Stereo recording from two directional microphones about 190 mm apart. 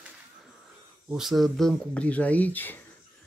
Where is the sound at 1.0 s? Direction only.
Centre (ahead or behind).